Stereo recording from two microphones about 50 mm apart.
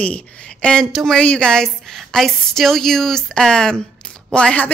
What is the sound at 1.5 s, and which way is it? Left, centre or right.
A woman's voice, centre.